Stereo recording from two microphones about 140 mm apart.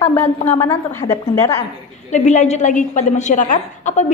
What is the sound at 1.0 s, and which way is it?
Speech, 90° left.